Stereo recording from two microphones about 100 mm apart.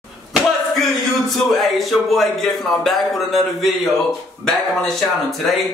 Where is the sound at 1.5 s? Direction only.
Centre (ahead or behind).